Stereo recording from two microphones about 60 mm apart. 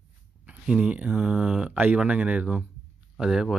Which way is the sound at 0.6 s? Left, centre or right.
Centre.